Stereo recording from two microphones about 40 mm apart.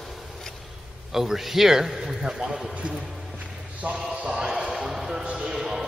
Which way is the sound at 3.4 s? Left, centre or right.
Right.